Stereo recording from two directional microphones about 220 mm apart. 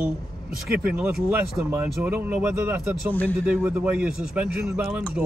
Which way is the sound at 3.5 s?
5° right (ahead or behind).